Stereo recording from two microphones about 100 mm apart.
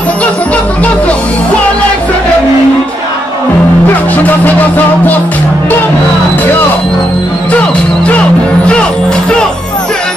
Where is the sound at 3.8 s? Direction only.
15° left (ahead or behind).